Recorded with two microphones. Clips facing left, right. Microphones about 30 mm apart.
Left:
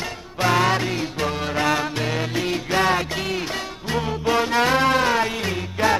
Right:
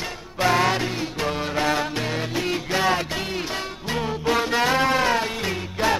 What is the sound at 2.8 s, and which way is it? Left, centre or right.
Music, left.